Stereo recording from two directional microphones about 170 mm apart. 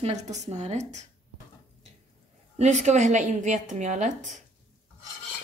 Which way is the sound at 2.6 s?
45° right (ahead or behind).